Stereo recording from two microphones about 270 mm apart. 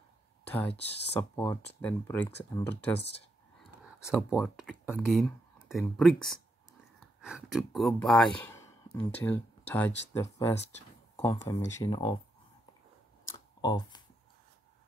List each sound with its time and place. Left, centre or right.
0.5 s speech: centre
4.3 s speech: centre
13.3 s a sound: centre